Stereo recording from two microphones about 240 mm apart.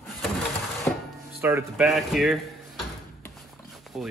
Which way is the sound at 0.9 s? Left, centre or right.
Centre.